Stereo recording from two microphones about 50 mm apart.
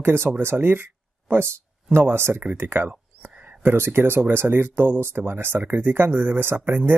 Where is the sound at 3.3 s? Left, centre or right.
Right.